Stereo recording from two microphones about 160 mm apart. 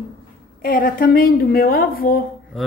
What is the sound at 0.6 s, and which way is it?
A woman's voice, 60° left (ahead or behind).